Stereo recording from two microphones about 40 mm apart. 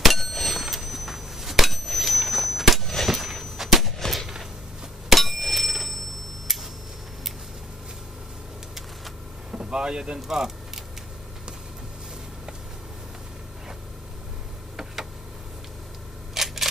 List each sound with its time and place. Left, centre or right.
0.0 s bicycle bell: centre
3.1 s a sound: centre
4.0 s gunshot: centre
5.1 s bicycle bell: centre
9.5 s speech: right
16.3 s camera: centre